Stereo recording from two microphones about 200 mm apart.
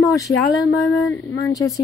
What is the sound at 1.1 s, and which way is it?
Speech, 15° left (ahead or behind).